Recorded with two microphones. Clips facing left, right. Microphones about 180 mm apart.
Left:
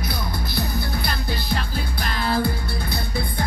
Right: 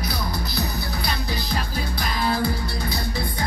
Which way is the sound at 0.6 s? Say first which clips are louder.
Left 5 dB; 55° left (ahead or behind).